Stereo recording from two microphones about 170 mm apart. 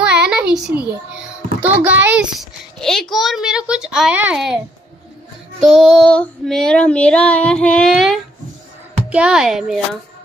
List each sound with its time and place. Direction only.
0.0 s a sound: 5° right (ahead or behind)
1.9 s a child's voice: 10° right (ahead or behind)
2.3 s child singing: centre (ahead or behind)
5.6 s child singing: centre (ahead or behind)